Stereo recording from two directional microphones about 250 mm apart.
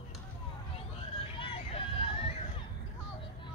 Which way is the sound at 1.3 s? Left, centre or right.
Left.